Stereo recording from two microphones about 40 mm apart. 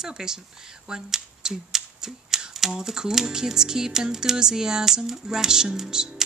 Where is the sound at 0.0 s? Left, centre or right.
Centre.